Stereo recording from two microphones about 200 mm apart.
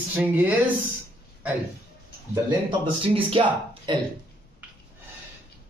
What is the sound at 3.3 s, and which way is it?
Speech, 25° right (ahead or behind).